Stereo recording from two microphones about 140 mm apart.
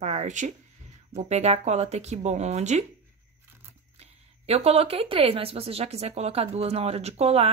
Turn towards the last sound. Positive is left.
turn(degrees=-45)  # may be behind; listen again after turning